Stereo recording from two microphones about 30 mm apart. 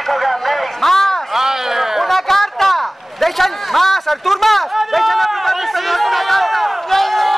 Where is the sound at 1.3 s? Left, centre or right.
Centre.